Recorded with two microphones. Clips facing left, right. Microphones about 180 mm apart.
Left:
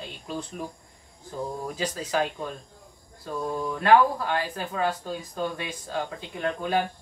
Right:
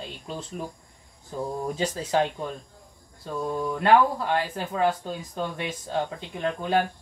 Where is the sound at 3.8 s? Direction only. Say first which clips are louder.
Even; 25° right (ahead or behind).